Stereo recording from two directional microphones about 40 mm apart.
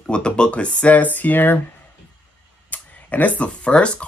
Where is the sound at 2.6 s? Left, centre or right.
Left.